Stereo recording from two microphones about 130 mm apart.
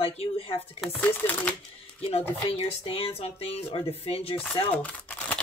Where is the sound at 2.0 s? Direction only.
50° left (ahead or behind).